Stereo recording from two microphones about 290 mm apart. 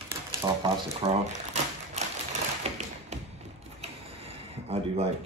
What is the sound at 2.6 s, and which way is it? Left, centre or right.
Tap, right.